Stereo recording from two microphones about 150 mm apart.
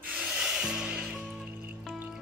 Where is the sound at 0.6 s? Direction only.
5° right (ahead or behind).